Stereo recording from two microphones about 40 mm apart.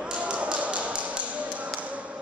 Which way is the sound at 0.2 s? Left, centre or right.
Right.